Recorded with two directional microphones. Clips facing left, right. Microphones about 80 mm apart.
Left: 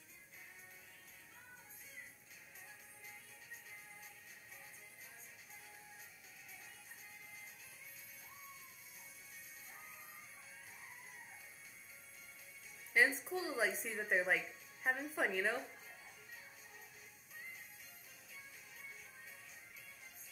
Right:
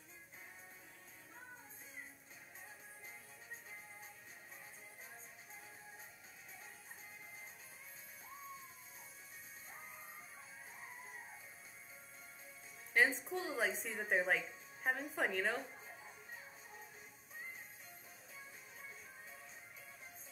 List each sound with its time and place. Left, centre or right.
12.9 s a woman's voice: centre
15.6 s music: right